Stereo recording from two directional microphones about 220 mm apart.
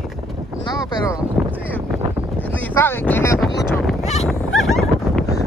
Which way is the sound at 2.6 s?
10° left (ahead or behind).